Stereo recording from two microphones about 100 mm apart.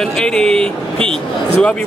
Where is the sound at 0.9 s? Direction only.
70° right (ahead or behind).